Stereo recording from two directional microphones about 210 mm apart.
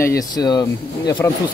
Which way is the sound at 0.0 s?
15° left (ahead or behind).